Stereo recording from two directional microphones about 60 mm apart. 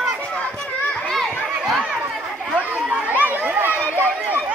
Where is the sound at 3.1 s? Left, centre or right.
Right.